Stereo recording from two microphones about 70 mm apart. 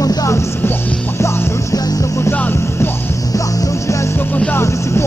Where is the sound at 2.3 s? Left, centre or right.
Left.